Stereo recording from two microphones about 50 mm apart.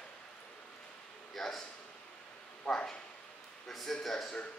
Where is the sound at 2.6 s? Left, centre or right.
Centre.